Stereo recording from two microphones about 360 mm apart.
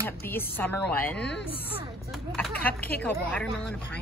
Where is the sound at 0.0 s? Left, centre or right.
Centre.